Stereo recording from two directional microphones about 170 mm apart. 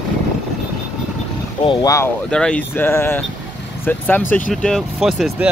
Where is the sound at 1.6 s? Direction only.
25° left (ahead or behind).